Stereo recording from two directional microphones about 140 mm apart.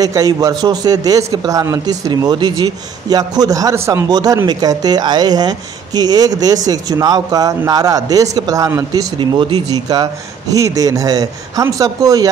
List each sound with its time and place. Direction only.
0.0 s a man's voice: 25° right (ahead or behind)